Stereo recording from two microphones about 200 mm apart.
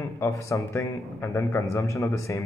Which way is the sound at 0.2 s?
15° left (ahead or behind).